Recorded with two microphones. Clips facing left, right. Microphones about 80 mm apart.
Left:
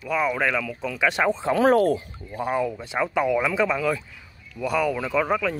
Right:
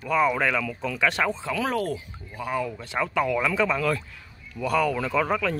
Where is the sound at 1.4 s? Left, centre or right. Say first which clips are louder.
Left 8 dB; left.